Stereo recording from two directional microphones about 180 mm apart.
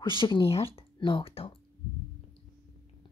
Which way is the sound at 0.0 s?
25° left (ahead or behind).